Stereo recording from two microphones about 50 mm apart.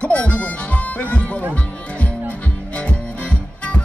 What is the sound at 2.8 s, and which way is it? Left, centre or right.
Music, left.